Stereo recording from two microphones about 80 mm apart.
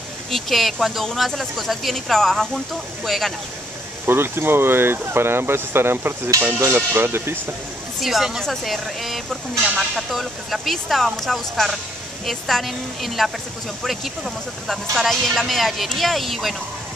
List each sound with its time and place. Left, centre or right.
0.3 s speech: centre
4.0 s speech: right
8.0 s speech: centre